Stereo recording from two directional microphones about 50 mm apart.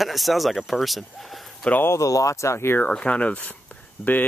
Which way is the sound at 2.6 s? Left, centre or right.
Left.